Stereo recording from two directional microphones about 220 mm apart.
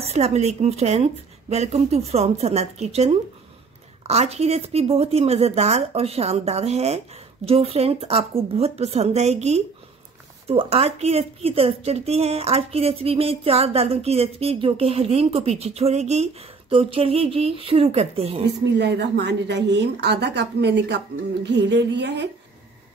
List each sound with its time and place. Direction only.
0.0 s speech: 30° right (ahead or behind)
18.6 s a woman's voice: 50° right (ahead or behind)